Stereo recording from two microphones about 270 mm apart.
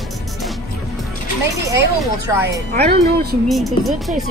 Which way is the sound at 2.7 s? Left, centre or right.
Right.